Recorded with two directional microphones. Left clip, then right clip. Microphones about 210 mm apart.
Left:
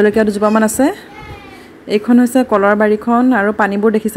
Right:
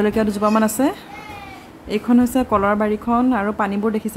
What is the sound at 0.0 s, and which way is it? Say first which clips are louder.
A woman's voice: left 7 dB; 15° left (ahead or behind).